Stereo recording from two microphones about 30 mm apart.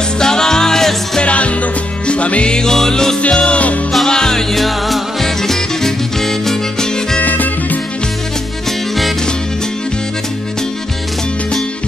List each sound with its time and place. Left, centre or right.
0.2 s music: left
1.2 s music: left
2.5 s music: centre
3.2 s music: left
4.1 s music: centre
4.6 s music: centre
5.2 s music: centre